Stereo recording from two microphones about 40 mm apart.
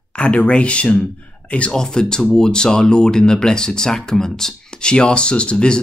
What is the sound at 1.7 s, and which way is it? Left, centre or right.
Speech, centre.